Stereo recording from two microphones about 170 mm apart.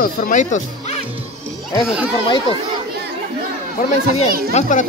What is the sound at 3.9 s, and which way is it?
Speech, 40° left (ahead or behind).